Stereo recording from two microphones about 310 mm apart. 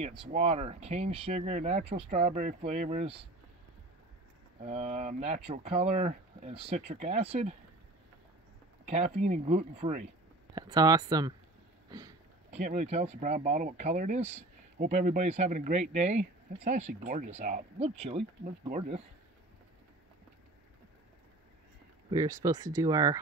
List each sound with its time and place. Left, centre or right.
0.0 s speech: centre
4.6 s speech: right
8.8 s speech: right
22.1 s speech: centre